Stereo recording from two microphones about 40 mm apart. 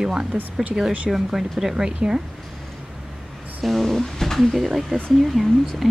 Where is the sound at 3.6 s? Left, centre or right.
Centre.